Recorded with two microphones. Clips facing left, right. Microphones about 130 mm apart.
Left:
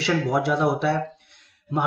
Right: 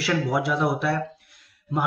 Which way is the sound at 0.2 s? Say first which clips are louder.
Left 2 dB; centre (ahead or behind).